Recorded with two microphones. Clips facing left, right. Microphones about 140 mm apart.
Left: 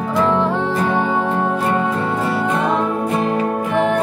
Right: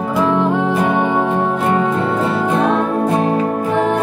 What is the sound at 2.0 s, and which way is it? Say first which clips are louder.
Music: right 2 dB; 30° right (ahead or behind).